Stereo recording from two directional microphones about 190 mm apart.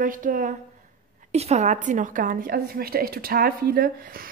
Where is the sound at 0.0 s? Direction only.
45° right (ahead or behind).